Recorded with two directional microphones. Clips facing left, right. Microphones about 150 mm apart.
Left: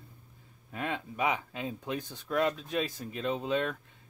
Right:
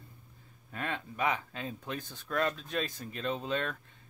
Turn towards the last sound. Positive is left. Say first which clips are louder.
# left 3 dB
turn(degrees=10)  # may be behind; listen again after turning